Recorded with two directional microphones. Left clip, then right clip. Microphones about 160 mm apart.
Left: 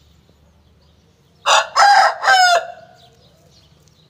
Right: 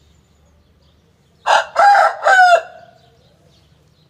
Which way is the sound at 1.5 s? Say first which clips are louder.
Right 1 dB; 20° right (ahead or behind).